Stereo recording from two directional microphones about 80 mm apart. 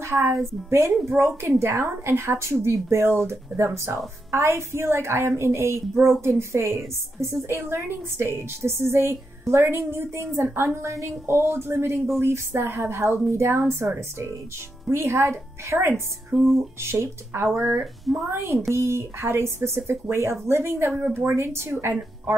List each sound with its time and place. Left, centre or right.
0.0 s a woman's voice: right